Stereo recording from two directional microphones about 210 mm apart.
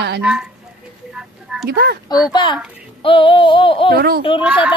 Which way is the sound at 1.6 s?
45° right (ahead or behind).